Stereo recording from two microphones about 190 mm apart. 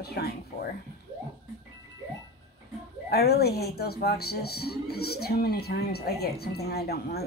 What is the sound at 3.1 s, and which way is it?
Speech, 55° left (ahead or behind).